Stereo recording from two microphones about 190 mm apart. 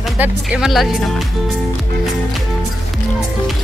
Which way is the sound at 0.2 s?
5° right (ahead or behind).